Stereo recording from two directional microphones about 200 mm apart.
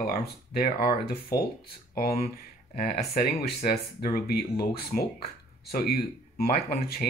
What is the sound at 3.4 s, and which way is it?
Speech, 50° left (ahead or behind).